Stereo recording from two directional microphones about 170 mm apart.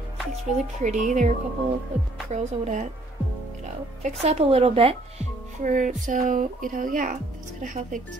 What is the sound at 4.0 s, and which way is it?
Speech, 40° right (ahead or behind).